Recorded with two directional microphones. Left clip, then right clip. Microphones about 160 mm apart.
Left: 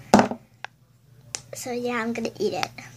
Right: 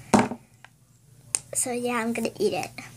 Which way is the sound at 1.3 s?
5° right (ahead or behind).